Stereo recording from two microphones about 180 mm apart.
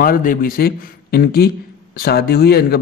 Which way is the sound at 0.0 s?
50° left (ahead or behind).